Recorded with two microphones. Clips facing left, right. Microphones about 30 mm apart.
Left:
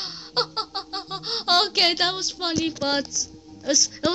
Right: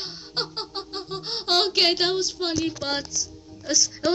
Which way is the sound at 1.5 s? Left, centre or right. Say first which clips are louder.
Left 1 dB; left.